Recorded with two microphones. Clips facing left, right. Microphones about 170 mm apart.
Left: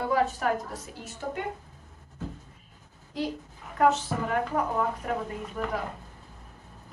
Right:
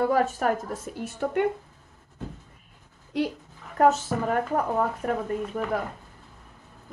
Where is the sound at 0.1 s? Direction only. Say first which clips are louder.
Right 2 dB; 50° right (ahead or behind).